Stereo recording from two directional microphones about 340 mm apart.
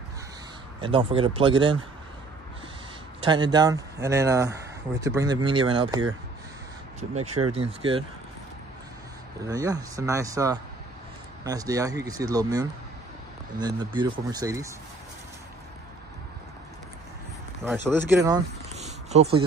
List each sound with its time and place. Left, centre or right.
0.7 s speech: centre
3.3 s speech: centre
7.2 s speech: right
7.5 s speech: centre
9.5 s speech: centre
17.6 s speech: centre